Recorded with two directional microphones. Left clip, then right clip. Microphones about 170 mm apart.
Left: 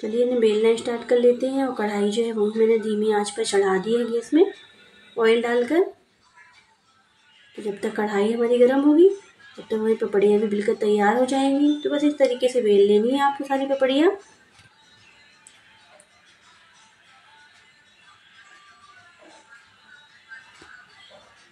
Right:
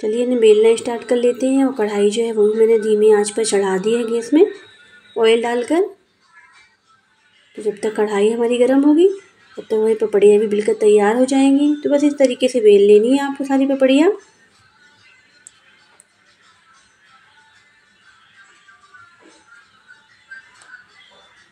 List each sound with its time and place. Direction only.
0.0 s a woman's voice: 20° right (ahead or behind)
7.8 s a woman's voice: 20° right (ahead or behind)